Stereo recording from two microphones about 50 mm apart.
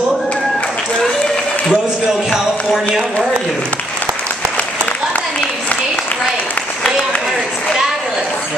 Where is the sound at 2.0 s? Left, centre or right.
Centre.